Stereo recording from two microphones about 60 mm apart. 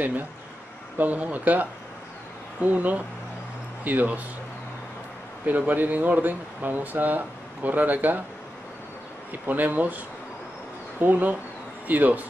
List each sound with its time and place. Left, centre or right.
0.0 s speech: right
5.7 s speech: right
9.3 s speech: right